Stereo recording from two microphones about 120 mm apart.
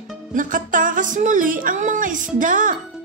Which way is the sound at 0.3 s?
90° right.